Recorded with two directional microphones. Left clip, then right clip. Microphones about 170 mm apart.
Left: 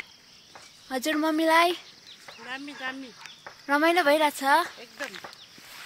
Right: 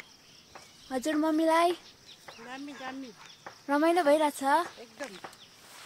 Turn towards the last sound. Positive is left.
turn(degrees=0)  # may be behind; listen again after turning